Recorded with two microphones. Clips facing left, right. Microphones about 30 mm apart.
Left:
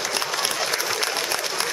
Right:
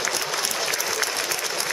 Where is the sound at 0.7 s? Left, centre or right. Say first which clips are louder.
Left 1 dB; left.